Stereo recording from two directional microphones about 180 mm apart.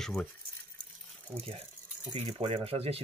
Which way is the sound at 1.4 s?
30° right (ahead or behind).